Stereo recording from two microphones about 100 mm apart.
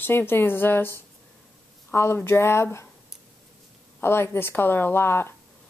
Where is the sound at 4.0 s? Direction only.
25° left (ahead or behind).